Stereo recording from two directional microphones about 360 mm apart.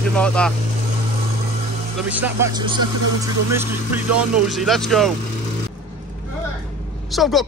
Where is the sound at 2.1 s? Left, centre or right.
Centre.